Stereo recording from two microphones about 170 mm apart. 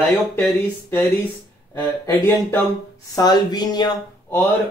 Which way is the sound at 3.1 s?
25° left (ahead or behind).